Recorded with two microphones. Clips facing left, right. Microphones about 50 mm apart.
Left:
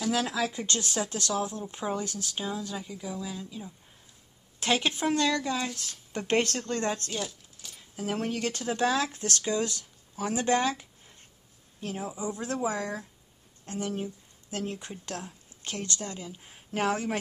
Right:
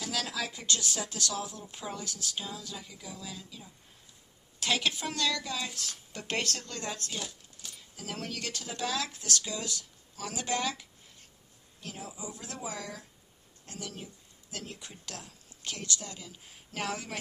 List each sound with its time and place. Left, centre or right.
0.1 s a woman's voice: left
7.1 s a sound: centre
7.9 s speech: left
9.1 s a woman's voice: left